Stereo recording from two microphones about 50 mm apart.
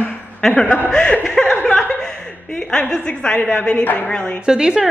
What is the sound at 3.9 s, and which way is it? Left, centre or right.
Speech, left.